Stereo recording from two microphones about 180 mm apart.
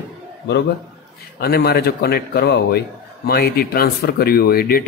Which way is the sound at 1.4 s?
60° left (ahead or behind).